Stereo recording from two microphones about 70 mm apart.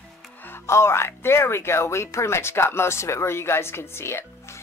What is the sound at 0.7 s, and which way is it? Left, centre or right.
A woman's voice, left.